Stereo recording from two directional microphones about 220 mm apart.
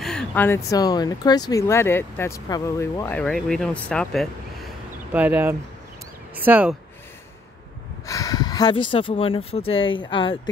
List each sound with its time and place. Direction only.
0.0 s a sound: 5° left (ahead or behind)
0.7 s speech: 15° left (ahead or behind); by 6.8 s 5° right (ahead or behind)
8.1 s speech: 15° left (ahead or behind)